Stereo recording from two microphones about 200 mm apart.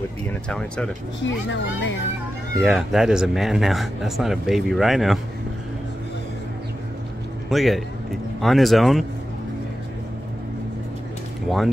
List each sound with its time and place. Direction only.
0.3 s speech: 5° left (ahead or behind)
1.2 s a child's voice: 65° left (ahead or behind)
2.6 s speech: centre (ahead or behind)
7.4 s speech: centre (ahead or behind)
11.4 s speech: centre (ahead or behind)